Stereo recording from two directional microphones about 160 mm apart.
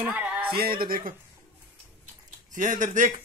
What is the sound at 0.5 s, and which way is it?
Speech, 70° right (ahead or behind).